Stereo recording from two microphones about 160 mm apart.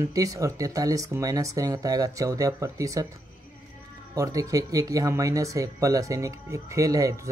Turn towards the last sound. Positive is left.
turn(degrees=-20)  # may be behind; listen again after turning